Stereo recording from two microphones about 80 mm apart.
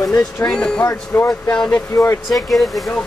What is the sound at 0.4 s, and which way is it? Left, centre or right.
Speech, centre.